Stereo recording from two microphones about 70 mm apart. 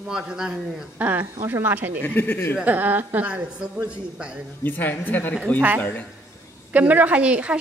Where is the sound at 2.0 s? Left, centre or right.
Left.